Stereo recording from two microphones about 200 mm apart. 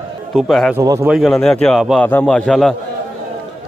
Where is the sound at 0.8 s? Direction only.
15° right (ahead or behind).